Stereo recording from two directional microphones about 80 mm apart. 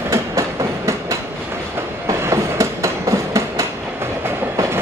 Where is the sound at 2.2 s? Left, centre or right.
Right.